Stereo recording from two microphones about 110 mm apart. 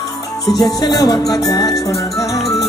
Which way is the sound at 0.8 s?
35° left (ahead or behind).